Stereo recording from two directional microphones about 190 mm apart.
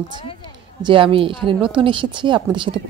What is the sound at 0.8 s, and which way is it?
A woman's voice, 25° right (ahead or behind).